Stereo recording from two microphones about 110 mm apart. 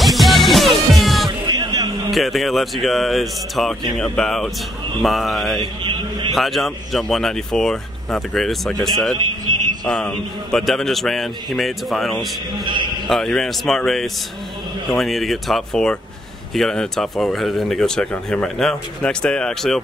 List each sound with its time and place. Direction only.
0.0 s music: centre (ahead or behind)
1.5 s music: 35° right (ahead or behind)
2.0 s speech: centre (ahead or behind)
5.6 s a man's voice: 45° right (ahead or behind)
6.3 s speech: centre (ahead or behind)
9.8 s speech: 10° left (ahead or behind)
12.6 s a man's voice: 45° right (ahead or behind)
13.0 s speech: 5° left (ahead or behind)